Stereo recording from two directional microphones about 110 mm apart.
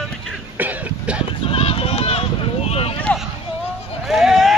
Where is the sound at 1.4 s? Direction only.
60° left (ahead or behind).